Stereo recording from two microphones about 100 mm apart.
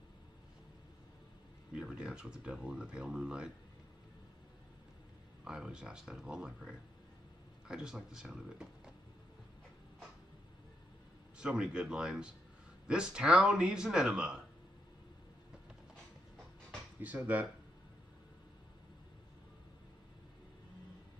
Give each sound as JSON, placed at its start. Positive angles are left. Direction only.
{"t": 1.8, "sound": "speech", "side_deg": -10}
{"t": 5.4, "sound": "speech", "side_deg": -5}
{"t": 11.3, "sound": "speech", "side_deg": -10}
{"t": 17.0, "sound": "speech", "side_deg": -15}